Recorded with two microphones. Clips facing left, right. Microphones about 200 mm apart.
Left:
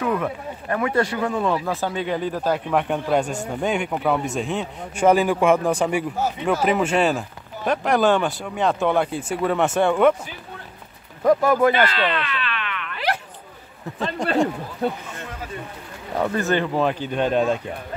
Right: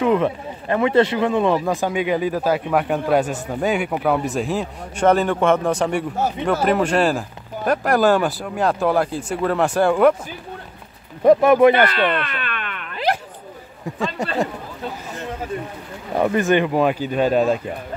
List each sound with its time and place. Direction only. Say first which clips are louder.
0.0 s speech: right 5 dB; 25° right (ahead or behind); by 10.1 s centre (ahead or behind)
11.2 s speech: right 5 dB; 20° right (ahead or behind)
11.7 s a sound: right 3 dB; 55° right (ahead or behind)
16.2 s speech: right 4 dB; 15° right (ahead or behind)